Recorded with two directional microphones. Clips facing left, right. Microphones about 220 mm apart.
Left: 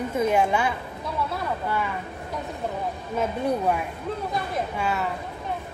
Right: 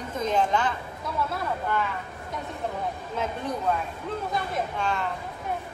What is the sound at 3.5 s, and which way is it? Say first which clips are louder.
A woman's voice: left 3 dB; 15° left (ahead or behind).